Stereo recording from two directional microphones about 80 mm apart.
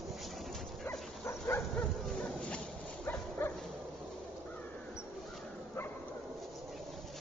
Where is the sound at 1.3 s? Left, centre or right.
Left.